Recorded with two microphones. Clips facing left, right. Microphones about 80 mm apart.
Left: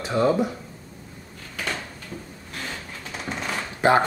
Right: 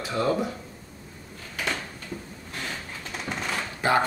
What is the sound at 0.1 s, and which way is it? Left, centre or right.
Speech, left.